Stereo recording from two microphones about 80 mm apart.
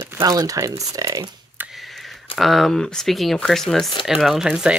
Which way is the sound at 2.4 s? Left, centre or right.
Centre.